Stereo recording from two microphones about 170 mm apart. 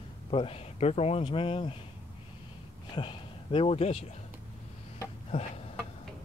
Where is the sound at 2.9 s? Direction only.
30° left (ahead or behind).